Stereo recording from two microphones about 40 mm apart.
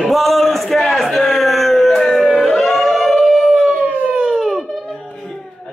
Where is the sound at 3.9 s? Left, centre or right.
Right.